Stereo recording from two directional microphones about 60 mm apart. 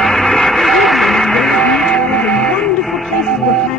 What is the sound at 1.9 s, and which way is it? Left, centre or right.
Music, centre.